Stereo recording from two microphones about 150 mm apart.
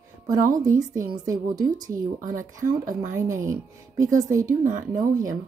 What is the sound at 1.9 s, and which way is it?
Speech, 65° right (ahead or behind).